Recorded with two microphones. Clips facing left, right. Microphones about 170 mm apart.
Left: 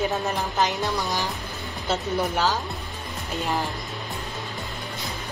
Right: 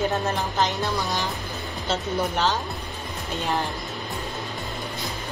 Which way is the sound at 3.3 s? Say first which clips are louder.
Even; centre (ahead or behind).